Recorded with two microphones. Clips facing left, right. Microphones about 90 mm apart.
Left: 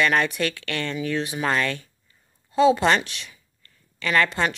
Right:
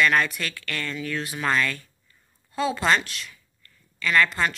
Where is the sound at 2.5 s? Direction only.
25° left (ahead or behind).